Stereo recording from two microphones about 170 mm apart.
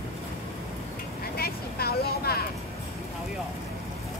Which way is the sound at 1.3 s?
65° left (ahead or behind).